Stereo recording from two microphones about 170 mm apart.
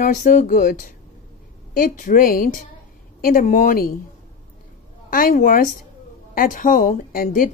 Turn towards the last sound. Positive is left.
turn(degrees=55)  # may be behind; listen again after turning